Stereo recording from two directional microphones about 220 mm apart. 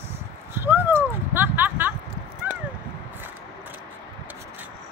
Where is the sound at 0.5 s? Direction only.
10° right (ahead or behind).